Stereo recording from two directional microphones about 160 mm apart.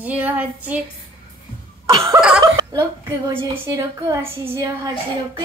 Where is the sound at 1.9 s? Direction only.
20° right (ahead or behind).